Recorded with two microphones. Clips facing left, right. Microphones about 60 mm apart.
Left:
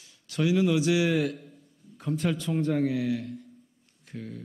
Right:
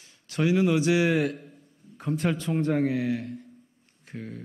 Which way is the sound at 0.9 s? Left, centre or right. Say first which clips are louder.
Right 2 dB; right.